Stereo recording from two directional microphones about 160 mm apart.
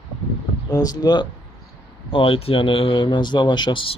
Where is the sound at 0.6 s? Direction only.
25° left (ahead or behind).